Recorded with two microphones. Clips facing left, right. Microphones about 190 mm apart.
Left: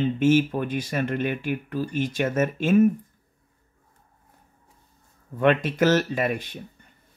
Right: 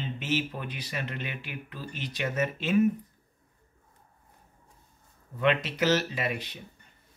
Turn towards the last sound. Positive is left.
turn(degrees=50)  # may be behind; listen again after turning